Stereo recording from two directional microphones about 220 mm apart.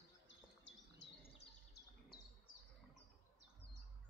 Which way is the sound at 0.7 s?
55° left (ahead or behind).